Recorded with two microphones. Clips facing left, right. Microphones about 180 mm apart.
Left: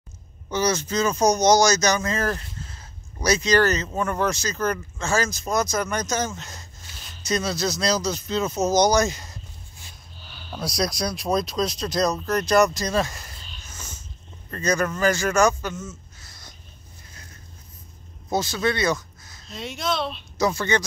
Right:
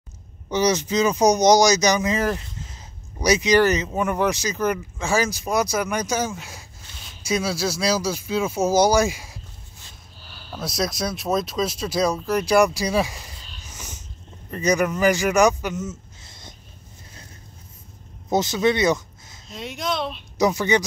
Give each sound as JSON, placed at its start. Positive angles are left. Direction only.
{"t": 0.5, "sound": "speech", "side_deg": -15}
{"t": 18.3, "sound": "speech", "side_deg": -20}
{"t": 19.5, "sound": "speech", "side_deg": -10}